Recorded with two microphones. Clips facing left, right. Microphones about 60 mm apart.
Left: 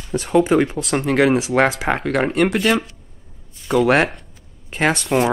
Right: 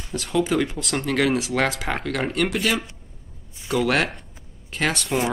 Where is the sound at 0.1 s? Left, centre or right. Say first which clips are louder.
Left 7 dB; left.